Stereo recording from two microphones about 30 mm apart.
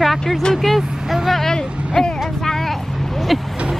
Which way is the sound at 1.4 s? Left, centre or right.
Left.